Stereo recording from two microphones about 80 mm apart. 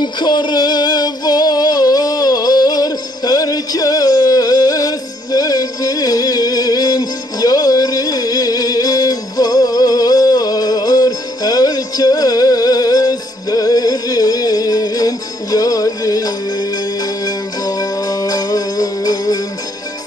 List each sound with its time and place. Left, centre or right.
0.0 s music: left